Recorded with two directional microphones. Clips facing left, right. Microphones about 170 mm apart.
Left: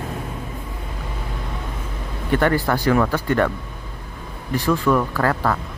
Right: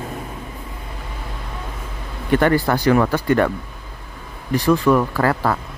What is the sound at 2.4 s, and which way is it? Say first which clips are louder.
Speech: right 2 dB; 25° right (ahead or behind).